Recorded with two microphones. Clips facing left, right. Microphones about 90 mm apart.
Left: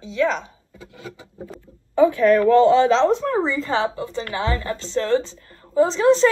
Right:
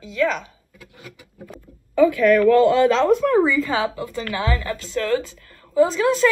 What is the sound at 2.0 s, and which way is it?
Speech, 30° left (ahead or behind).